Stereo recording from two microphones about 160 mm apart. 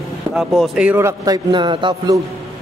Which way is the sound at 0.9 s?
15° right (ahead or behind).